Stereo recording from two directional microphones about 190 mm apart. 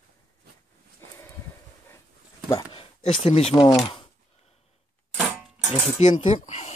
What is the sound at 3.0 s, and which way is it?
Speech, 35° left (ahead or behind).